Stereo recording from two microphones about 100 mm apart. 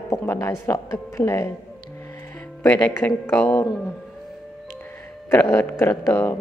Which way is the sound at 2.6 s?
15° left (ahead or behind).